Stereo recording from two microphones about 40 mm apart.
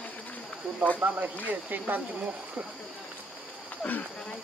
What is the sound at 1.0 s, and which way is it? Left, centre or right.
Speech, right.